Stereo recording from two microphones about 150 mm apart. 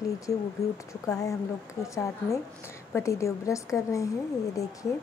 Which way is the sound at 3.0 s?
20° left (ahead or behind).